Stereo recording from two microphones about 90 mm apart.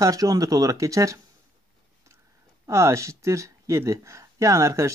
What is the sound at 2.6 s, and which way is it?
Speech, 35° right (ahead or behind).